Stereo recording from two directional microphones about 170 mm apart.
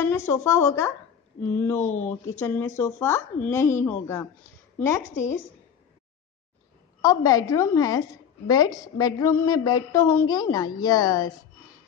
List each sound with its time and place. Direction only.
0.0 s speech: 15° left (ahead or behind)
7.0 s a woman's voice: 20° left (ahead or behind)